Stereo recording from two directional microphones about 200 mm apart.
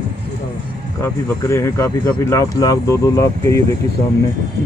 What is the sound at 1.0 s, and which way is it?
Speech, 15° left (ahead or behind).